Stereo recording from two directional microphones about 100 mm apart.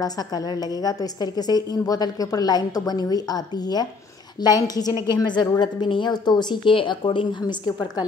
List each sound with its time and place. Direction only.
0.8 s a woman's voice: 40° left (ahead or behind)